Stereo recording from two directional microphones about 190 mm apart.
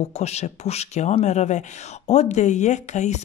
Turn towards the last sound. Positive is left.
turn(degrees=40)  # may be behind; listen again after turning